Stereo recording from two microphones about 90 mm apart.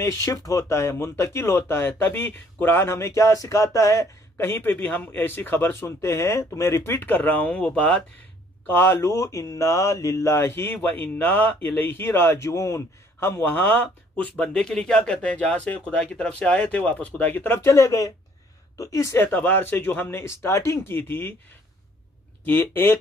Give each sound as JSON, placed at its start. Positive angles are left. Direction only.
{"t": 0.0, "sound": "speech", "side_deg": 40}
{"t": 8.6, "sound": "speech", "side_deg": 25}
{"t": 19.2, "sound": "speech", "side_deg": 20}
{"t": 22.5, "sound": "speech", "side_deg": 25}